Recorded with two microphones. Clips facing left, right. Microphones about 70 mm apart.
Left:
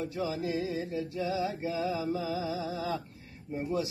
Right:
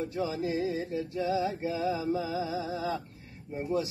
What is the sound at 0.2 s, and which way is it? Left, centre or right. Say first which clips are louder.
Mantra: right 2 dB; right.